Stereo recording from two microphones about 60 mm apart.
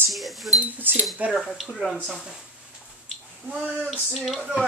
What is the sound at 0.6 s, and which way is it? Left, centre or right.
Speech, right.